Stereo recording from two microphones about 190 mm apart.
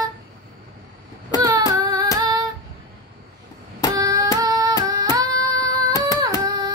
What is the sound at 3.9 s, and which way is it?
Hands, 20° right (ahead or behind).